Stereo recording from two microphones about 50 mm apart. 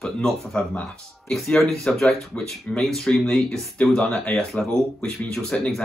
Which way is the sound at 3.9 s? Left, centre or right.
Centre.